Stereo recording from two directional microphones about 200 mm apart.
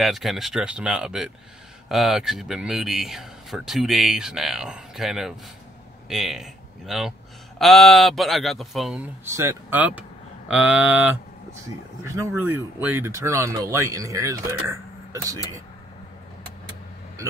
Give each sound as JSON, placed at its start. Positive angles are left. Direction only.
{"t": 0.0, "sound": "speech", "side_deg": 0}